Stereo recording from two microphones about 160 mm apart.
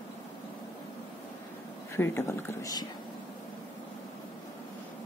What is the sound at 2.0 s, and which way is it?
Speech, 15° left (ahead or behind).